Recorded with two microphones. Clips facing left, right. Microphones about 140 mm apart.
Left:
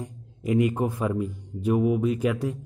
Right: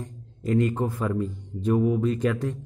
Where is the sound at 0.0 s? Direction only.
10° left (ahead or behind).